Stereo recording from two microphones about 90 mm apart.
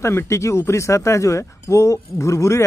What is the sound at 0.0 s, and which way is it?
Speech, 30° left (ahead or behind).